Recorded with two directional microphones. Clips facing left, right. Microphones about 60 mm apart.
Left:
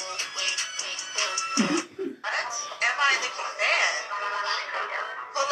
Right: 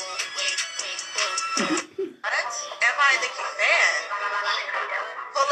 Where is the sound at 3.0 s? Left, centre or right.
Right.